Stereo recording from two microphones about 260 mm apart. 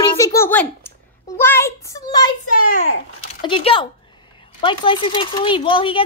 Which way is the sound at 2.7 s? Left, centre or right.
Left.